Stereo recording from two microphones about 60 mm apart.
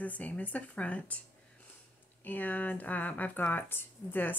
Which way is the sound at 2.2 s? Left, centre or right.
Left.